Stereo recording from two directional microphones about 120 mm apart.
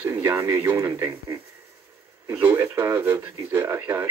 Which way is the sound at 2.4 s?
20° right (ahead or behind).